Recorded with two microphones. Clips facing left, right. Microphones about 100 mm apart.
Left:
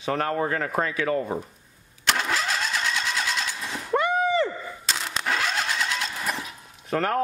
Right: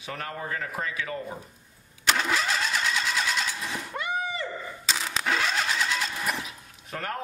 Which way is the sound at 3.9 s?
65° left (ahead or behind).